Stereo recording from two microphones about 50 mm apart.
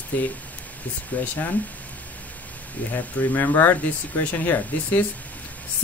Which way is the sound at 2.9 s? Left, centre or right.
Left.